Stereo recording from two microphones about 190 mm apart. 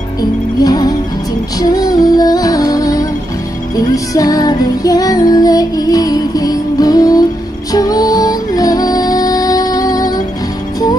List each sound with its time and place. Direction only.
0.2 s music: 20° left (ahead or behind)